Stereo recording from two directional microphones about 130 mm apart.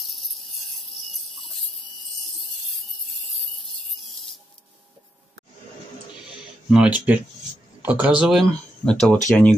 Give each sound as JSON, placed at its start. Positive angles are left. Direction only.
{"t": 0.0, "sound": "a sound", "side_deg": 0}
{"t": 3.3, "sound": "wood", "side_deg": 0}
{"t": 6.7, "sound": "speech", "side_deg": -10}
{"t": 8.4, "sound": "speech", "side_deg": 5}